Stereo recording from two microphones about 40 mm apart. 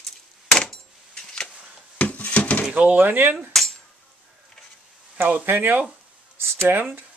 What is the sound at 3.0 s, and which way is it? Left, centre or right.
Speech, right.